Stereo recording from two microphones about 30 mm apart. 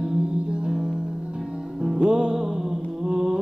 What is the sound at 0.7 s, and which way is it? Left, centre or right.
Music, right.